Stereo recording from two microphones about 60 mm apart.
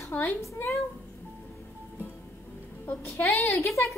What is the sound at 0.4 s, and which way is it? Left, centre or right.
Speech, left.